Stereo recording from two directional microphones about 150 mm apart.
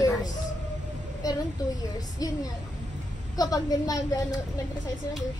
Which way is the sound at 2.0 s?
25° left (ahead or behind).